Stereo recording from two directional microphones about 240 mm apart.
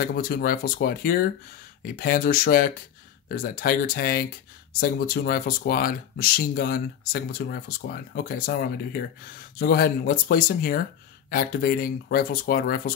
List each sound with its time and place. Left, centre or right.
0.0 s speech: left